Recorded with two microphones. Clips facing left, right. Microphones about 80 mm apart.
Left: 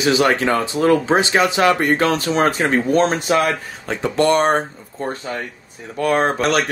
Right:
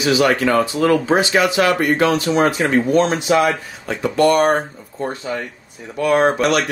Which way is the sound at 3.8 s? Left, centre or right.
Left.